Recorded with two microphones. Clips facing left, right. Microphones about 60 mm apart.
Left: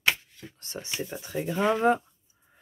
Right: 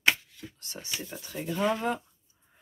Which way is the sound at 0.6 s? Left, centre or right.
Left.